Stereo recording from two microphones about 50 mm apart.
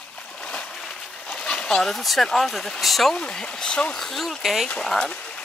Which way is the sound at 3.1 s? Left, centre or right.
Centre.